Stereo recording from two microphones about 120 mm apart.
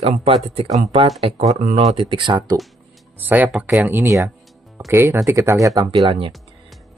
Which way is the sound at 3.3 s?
15° right (ahead or behind).